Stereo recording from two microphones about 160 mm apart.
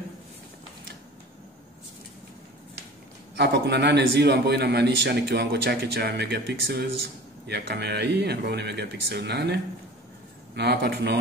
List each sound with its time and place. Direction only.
3.3 s a man's voice: 90° right